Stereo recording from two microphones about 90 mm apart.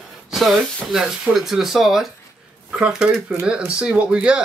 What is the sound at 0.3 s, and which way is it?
Speech, centre (ahead or behind).